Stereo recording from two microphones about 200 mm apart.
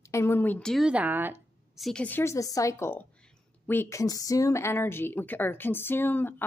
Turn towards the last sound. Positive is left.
turn(degrees=10)  # may be behind; listen again after turning